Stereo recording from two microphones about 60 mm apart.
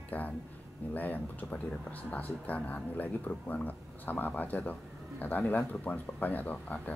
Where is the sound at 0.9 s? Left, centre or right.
Left.